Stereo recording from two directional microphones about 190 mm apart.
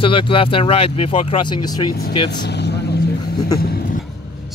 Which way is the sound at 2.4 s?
60° left (ahead or behind).